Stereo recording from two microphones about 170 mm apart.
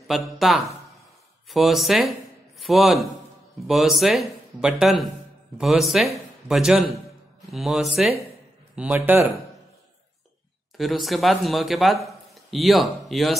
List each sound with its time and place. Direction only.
0.1 s speech: centre (ahead or behind)
10.8 s speech: centre (ahead or behind)